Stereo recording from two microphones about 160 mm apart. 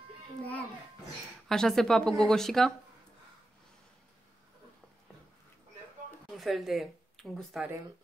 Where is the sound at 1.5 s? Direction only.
Centre (ahead or behind).